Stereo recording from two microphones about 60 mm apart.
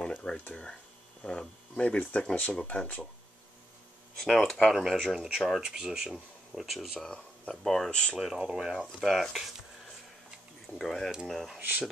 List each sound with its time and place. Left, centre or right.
0.0 s a sound: centre
1.2 s speech: centre
4.2 s speech: centre
5.1 s speech: centre
7.1 s speech: centre
7.9 s speech: centre
8.2 s speech: centre
10.8 s speech: centre